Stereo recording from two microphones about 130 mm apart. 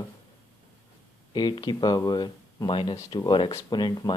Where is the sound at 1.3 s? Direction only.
35° left (ahead or behind).